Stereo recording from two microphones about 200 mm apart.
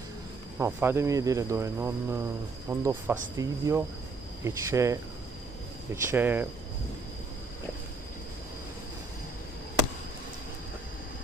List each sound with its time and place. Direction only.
0.6 s speech: 10° right (ahead or behind)
6.0 s speech: 10° right (ahead or behind)